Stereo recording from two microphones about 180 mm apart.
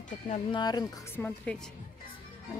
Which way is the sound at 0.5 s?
25° left (ahead or behind).